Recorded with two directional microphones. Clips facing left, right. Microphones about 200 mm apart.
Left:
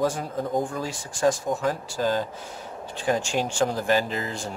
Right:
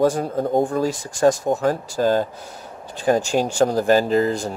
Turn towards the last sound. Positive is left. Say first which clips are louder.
# right 11 dB
turn(degrees=-40)  # may be behind; listen again after turning